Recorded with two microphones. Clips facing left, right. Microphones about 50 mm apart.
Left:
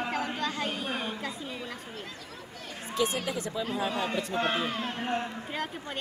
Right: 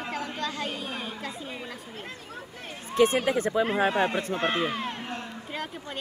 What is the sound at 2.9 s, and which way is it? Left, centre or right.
Speech, right.